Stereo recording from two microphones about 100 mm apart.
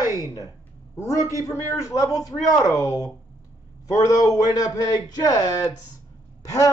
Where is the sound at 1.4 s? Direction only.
35° left (ahead or behind).